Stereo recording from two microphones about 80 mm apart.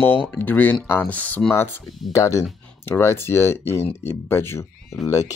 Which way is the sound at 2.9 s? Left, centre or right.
Left.